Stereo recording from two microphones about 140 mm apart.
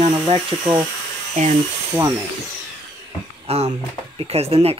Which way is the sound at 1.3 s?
60° right (ahead or behind).